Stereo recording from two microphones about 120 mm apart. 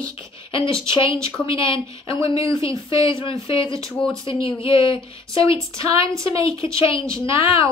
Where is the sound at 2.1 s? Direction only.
50° left (ahead or behind).